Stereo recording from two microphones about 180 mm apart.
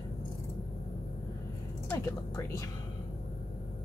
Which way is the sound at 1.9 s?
20° left (ahead or behind).